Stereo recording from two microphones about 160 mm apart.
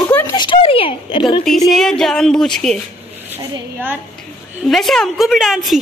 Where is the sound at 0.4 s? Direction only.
30° left (ahead or behind).